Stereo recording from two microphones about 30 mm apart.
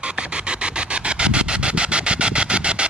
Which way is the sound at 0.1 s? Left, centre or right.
Right.